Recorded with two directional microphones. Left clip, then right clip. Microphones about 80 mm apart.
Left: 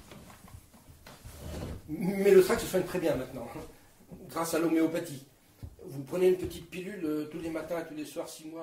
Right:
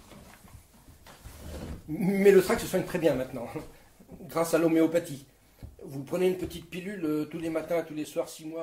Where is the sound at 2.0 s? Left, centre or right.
Right.